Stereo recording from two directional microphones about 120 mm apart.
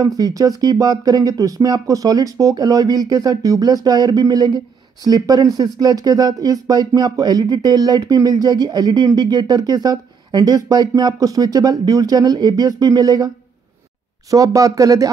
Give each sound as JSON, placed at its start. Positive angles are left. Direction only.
{"t": 0.2, "sound": "speech", "side_deg": -30}
{"t": 14.3, "sound": "speech", "side_deg": -30}